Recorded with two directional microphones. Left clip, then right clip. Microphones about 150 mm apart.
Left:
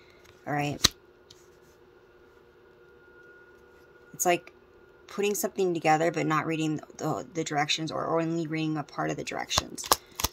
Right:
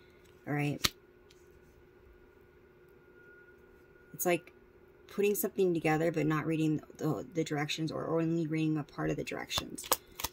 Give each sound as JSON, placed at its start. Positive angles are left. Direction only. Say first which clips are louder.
{"t": 0.5, "sound": "speech", "louder": "left 5 dB", "side_deg": -20}
{"t": 4.2, "sound": "speech", "louder": "left 6 dB", "side_deg": -20}